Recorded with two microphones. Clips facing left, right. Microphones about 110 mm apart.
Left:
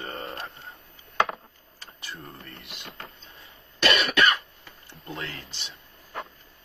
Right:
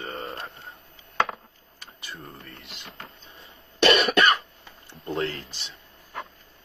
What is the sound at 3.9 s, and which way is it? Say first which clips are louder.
Cough: right 3 dB; 30° right (ahead or behind).